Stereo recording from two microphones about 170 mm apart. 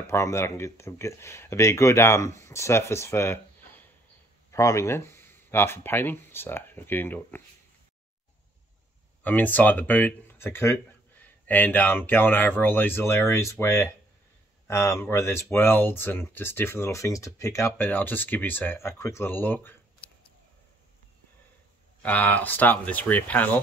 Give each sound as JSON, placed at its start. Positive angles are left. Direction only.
{"t": 0.0, "sound": "speech", "side_deg": 15}
{"t": 9.2, "sound": "speech", "side_deg": 10}
{"t": 22.0, "sound": "speech", "side_deg": 10}